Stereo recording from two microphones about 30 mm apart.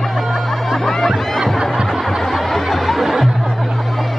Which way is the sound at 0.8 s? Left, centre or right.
Centre.